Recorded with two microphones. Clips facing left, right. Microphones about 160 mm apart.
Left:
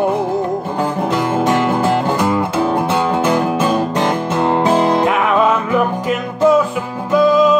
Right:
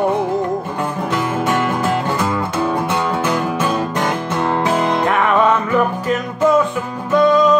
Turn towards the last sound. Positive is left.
turn(degrees=5)  # may be behind; listen again after turning